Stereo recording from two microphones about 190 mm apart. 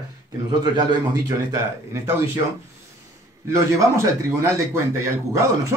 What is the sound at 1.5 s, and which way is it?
Speech, 15° right (ahead or behind).